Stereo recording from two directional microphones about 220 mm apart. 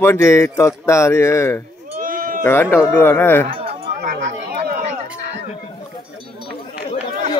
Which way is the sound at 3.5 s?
25° right (ahead or behind).